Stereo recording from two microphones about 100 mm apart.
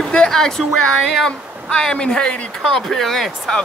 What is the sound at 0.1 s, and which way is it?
Speech, 10° left (ahead or behind).